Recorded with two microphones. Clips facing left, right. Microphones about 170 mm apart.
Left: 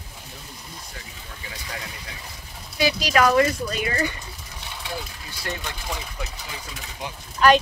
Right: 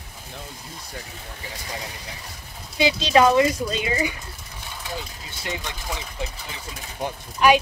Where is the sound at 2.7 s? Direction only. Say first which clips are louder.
Right 3 dB; 25° right (ahead or behind).